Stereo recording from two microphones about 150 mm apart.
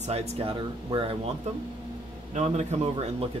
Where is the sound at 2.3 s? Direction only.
45° right (ahead or behind).